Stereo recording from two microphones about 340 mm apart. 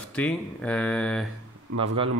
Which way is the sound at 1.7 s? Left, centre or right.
Centre.